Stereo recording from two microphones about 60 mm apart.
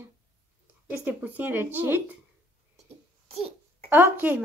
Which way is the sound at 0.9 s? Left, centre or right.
Right.